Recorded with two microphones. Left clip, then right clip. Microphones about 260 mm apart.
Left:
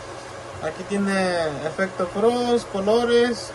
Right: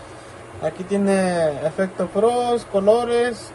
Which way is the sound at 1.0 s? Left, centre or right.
Right.